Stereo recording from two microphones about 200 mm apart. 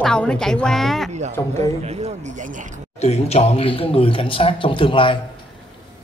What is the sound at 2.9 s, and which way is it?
A man's voice, 30° left (ahead or behind).